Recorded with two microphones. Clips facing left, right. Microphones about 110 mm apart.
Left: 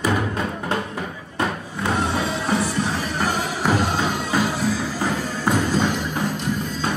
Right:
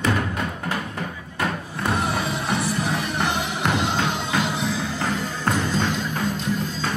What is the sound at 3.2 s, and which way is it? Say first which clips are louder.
Music: left 1 dB; 5° left (ahead or behind).